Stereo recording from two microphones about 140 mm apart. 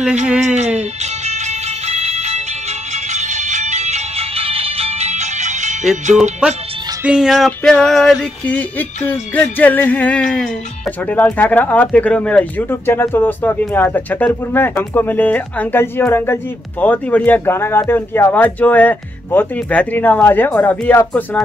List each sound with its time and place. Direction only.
0.6 s music: 55° right (ahead or behind)
6.4 s speech: 5° right (ahead or behind)
7.0 s a sound: 5° right (ahead or behind)
11.1 s speech: 10° left (ahead or behind)